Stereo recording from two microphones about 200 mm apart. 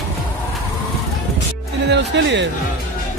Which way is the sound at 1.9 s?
60° right (ahead or behind).